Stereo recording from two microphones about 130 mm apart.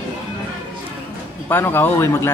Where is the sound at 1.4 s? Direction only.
15° left (ahead or behind).